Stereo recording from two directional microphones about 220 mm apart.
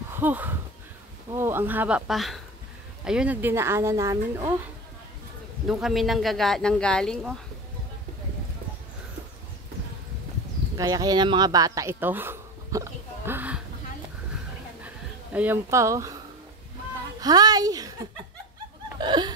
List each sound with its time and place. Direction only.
0.1 s a sound: 10° right (ahead or behind)
1.3 s speech: 10° right (ahead or behind)
5.7 s speech: centre (ahead or behind)
10.8 s speech: 15° right (ahead or behind)
15.3 s speech: 10° right (ahead or behind)
17.2 s speech: 15° right (ahead or behind)
18.9 s speech: 20° right (ahead or behind)